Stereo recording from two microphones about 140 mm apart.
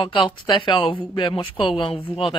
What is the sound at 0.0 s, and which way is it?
Speech, 35° left (ahead or behind).